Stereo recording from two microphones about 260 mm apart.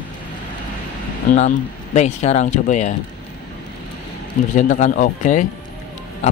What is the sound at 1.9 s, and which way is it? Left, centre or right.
Speech, left.